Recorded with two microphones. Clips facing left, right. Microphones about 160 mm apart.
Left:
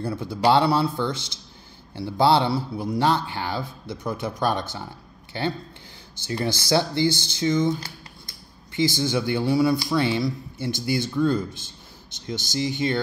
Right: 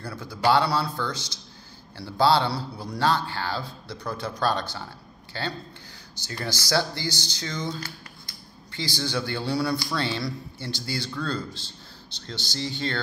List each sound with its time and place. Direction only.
0.0 s speech: 25° left (ahead or behind)